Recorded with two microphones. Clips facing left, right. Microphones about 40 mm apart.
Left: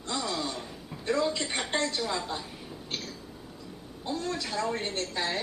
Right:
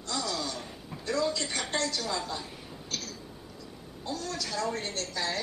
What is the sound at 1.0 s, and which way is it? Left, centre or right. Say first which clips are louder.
A woman's voice: left 2 dB; left.